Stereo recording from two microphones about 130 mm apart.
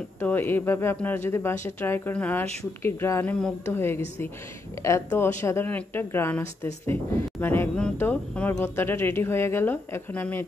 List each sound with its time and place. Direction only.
0.2 s a woman's voice: 15° left (ahead or behind)